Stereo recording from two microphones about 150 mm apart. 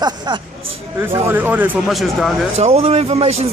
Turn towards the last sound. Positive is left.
turn(degrees=-45)  # may be behind; listen again after turning